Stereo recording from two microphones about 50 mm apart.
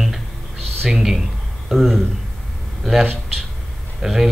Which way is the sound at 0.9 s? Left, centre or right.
Centre.